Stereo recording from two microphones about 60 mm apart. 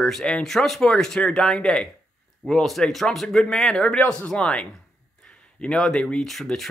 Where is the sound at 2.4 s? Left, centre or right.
Centre.